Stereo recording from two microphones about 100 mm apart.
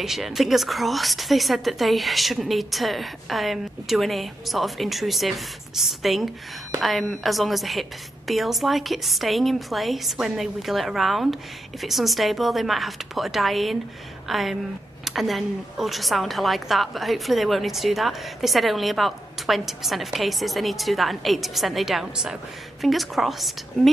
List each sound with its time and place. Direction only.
0.0 s a woman's voice: centre (ahead or behind)